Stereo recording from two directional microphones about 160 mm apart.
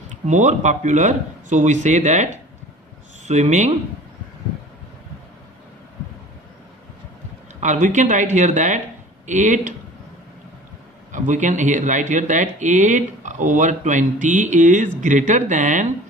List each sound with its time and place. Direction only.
0.1 s speech: 50° right (ahead or behind)
3.3 s speech: 45° right (ahead or behind)
7.6 s speech: 50° right (ahead or behind)
11.1 s speech: 50° right (ahead or behind)